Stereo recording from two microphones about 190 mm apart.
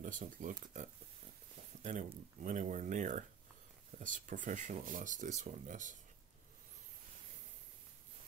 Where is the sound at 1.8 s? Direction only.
40° right (ahead or behind).